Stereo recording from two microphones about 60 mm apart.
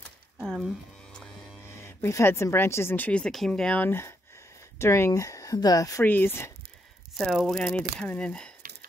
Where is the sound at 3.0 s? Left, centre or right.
Left.